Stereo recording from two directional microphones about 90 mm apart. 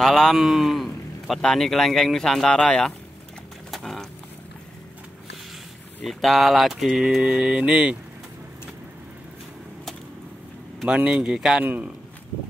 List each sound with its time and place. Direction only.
0.0 s speech: centre (ahead or behind)
3.7 s a sound: 5° left (ahead or behind)
6.0 s speech: centre (ahead or behind)
10.9 s speech: 10° right (ahead or behind)
11.6 s a man's voice: 20° right (ahead or behind)